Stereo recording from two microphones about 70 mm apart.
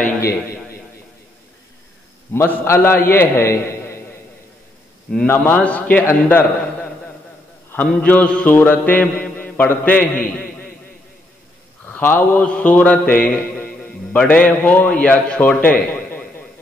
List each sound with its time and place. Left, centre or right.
2.3 s a man's voice: left
5.4 s music: left
6.0 s a man's voice: left
7.7 s music: left
8.5 s a man's voice: left
11.9 s music: left
14.1 s a man's voice: centre; by 16.4 s left